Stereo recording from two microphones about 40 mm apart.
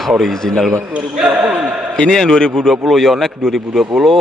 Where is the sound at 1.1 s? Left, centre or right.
Right.